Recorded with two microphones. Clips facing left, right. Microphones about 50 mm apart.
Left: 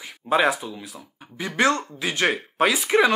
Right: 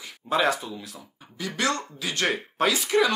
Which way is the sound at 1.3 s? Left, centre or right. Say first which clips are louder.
Left 6 dB; left.